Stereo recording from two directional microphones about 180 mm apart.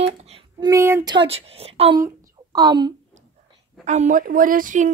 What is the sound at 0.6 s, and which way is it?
Speech, 15° right (ahead or behind).